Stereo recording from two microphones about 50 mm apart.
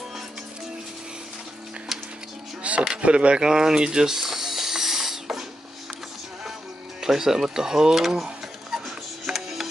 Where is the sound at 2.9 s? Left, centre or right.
Right.